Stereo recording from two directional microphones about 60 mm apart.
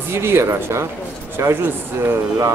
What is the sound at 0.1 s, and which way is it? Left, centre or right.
Speech, right.